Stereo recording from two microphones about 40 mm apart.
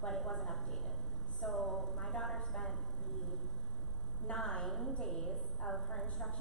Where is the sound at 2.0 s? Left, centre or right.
Centre.